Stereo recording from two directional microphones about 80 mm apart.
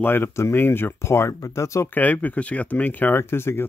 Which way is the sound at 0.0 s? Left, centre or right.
Left.